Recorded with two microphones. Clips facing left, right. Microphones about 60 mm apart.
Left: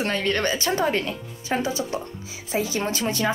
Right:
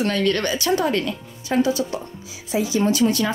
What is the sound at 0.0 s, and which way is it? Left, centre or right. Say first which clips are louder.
Speech: right 3 dB; left.